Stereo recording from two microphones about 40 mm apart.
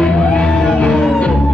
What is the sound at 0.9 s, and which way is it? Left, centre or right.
Music, centre.